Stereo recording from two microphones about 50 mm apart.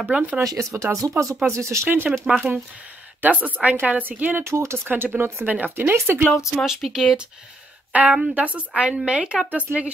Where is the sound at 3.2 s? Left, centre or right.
Right.